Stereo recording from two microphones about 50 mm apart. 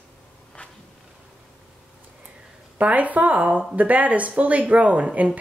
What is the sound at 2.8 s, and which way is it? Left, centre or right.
Speech, right.